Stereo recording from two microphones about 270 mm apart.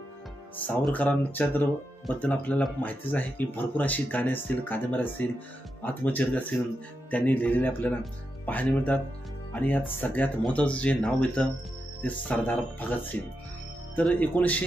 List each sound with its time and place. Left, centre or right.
0.6 s speech: centre